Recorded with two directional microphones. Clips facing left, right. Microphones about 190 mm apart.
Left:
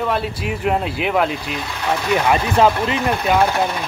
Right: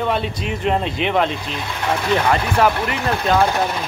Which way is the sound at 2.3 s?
20° left (ahead or behind).